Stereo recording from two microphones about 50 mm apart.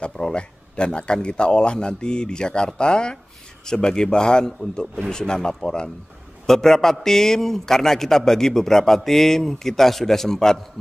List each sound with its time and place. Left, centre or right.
0.0 s speech: centre